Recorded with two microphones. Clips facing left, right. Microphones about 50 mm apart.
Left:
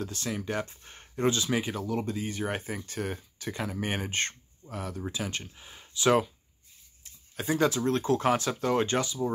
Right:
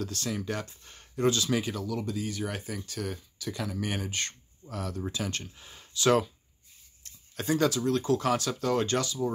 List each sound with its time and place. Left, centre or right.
0.0 s speech: centre
4.6 s speech: centre
7.0 s a sound: centre
7.8 s speech: left